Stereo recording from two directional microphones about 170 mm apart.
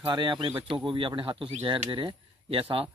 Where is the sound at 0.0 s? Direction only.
25° right (ahead or behind).